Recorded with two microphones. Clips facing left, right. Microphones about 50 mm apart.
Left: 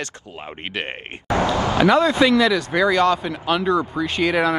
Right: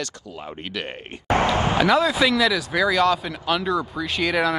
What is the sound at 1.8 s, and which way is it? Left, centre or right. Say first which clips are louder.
Speech: left 4 dB; centre.